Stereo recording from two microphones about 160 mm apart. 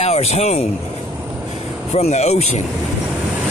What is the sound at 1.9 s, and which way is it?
Speech, 45° left (ahead or behind).